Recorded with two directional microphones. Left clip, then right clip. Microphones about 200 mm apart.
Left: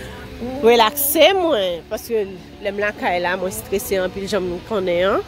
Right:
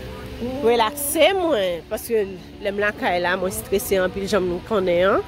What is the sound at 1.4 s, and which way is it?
Speech, 15° left (ahead or behind).